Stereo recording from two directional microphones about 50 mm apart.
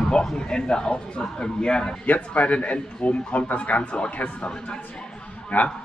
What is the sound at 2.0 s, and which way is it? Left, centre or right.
A man's voice, left.